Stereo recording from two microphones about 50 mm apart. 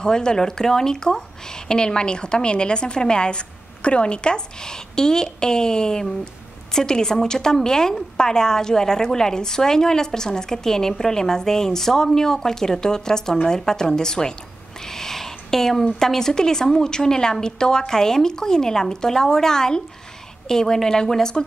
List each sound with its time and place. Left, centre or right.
0.0 s a woman's voice: centre